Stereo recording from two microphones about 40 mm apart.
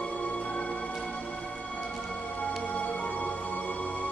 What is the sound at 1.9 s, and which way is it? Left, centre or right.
Music, centre.